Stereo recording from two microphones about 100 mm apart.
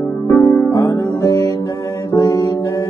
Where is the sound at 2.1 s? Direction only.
40° left (ahead or behind).